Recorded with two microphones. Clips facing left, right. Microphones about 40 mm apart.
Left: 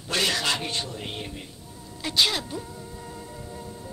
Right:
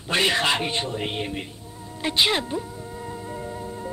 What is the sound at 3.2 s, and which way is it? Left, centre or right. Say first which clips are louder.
Music: right 6 dB; right.